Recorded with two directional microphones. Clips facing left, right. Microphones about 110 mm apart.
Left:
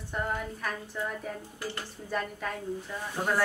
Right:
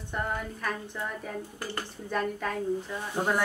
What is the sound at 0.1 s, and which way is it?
Speech, 5° left (ahead or behind).